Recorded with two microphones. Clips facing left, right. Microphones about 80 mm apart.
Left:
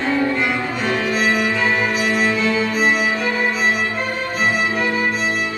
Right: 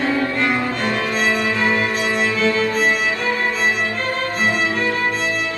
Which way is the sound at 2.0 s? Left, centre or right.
Right.